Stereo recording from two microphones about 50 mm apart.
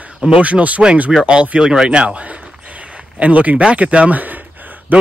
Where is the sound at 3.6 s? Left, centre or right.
Right.